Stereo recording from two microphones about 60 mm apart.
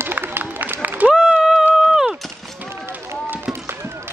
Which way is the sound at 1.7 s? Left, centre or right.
Centre.